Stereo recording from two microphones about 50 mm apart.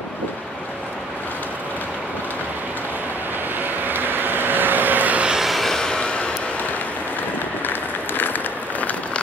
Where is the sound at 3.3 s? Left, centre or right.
Right.